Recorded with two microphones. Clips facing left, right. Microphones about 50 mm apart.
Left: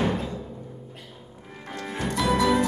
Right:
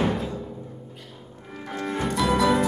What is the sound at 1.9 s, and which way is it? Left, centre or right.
Music, centre.